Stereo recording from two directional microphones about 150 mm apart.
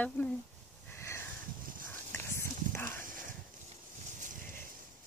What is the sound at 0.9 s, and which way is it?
Sniff, 15° left (ahead or behind).